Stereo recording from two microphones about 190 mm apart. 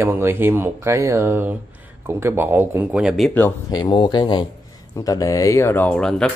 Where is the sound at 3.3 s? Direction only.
15° left (ahead or behind).